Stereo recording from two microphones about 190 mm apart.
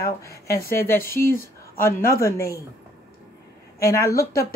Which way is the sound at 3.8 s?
15° left (ahead or behind).